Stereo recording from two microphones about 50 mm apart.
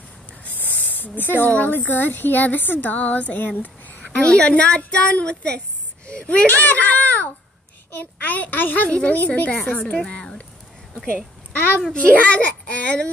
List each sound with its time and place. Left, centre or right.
0.6 s a sound: left
1.5 s a child's voice: left
6.4 s speech: left
8.8 s a child's voice: left
9.9 s speech: centre
11.9 s a child's voice: left